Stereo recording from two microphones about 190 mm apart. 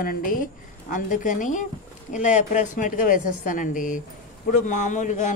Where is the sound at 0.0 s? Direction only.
50° left (ahead or behind).